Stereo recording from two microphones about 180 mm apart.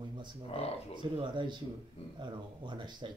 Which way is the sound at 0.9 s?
25° right (ahead or behind).